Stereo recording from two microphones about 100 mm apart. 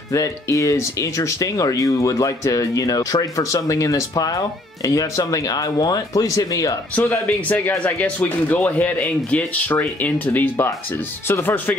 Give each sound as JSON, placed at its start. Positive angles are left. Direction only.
{"t": 0.1, "sound": "speech", "side_deg": 35}
{"t": 7.0, "sound": "speech", "side_deg": 15}